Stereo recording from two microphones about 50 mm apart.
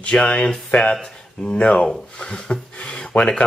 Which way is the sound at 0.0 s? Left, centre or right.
Left.